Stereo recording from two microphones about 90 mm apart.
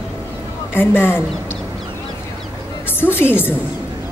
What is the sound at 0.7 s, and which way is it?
Speech, 25° left (ahead or behind).